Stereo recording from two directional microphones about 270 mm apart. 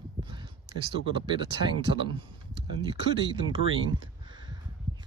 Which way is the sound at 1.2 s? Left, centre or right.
Centre.